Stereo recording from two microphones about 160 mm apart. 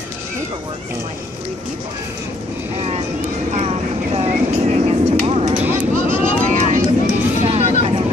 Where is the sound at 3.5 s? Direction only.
40° right (ahead or behind).